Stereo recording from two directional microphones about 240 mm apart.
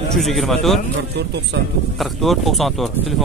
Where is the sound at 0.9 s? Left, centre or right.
Right.